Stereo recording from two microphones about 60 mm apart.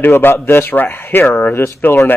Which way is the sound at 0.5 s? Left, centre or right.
Left.